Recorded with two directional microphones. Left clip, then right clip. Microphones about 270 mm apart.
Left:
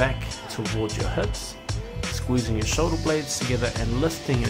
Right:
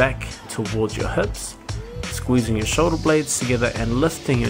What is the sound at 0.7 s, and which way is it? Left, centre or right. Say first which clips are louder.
Speech: right 5 dB; centre.